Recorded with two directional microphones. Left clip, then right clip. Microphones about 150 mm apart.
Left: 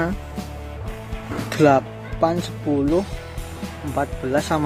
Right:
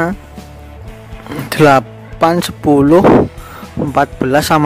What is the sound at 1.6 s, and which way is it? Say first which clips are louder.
Speech: right 7 dB; 45° right (ahead or behind).